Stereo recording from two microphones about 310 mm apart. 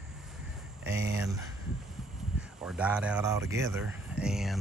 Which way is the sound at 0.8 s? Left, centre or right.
Right.